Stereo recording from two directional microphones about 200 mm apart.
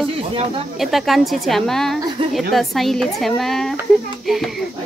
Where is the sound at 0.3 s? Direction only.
25° right (ahead or behind).